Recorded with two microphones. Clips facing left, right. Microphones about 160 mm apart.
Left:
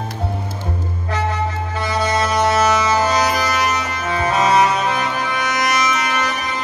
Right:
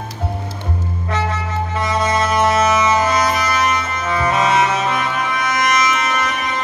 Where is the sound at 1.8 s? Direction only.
30° left (ahead or behind).